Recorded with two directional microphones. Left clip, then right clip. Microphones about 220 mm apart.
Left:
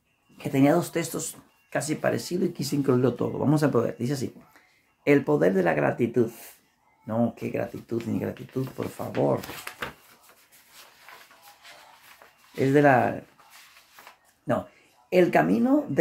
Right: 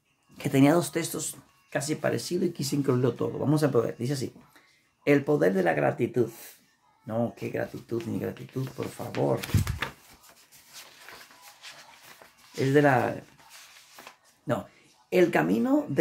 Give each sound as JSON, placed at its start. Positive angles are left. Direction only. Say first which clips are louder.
{"t": 0.4, "sound": "speech", "louder": "even", "side_deg": -30}
{"t": 0.7, "sound": "speech", "louder": "left 1 dB", "side_deg": -5}
{"t": 12.5, "sound": "speech", "louder": "left 3 dB", "side_deg": 5}
{"t": 14.0, "sound": "a sound", "louder": "right 1 dB", "side_deg": -20}
{"t": 14.5, "sound": "speech", "louder": "left 3 dB", "side_deg": 0}